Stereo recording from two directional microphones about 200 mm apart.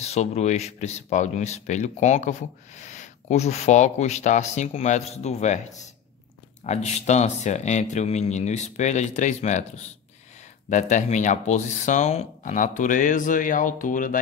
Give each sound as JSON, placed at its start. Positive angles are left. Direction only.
{"t": 0.0, "sound": "a man's voice", "side_deg": 35}
{"t": 10.7, "sound": "a man's voice", "side_deg": 35}